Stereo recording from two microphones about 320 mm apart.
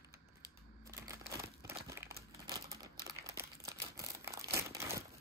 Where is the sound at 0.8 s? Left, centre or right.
Centre.